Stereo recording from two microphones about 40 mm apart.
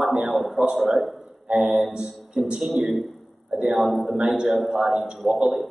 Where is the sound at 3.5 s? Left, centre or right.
Centre.